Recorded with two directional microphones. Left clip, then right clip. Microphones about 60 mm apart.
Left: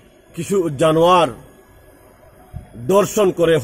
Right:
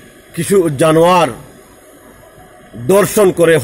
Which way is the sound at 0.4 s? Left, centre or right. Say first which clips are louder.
Right 6 dB; left.